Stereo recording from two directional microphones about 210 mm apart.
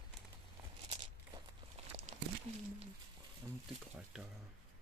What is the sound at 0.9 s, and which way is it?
Crumpling, 20° right (ahead or behind).